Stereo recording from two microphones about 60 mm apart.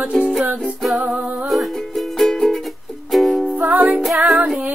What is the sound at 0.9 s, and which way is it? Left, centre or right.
Music, right.